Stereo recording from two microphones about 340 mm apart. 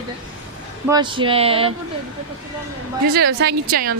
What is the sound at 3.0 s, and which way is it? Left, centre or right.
Speech, right.